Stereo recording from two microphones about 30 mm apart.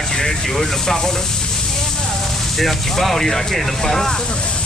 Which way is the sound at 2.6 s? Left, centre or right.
Centre.